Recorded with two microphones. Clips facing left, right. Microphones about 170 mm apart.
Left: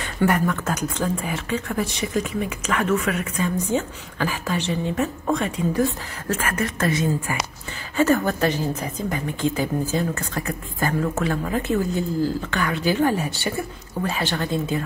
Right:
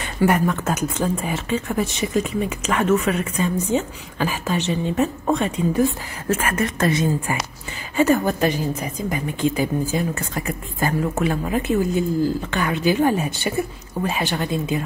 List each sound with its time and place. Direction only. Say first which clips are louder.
0.3 s speech: right 2 dB; 20° right (ahead or behind)
7.9 s a woman's voice: right 2 dB; 15° right (ahead or behind)